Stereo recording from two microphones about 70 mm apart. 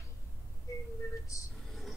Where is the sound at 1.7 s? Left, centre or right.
Centre.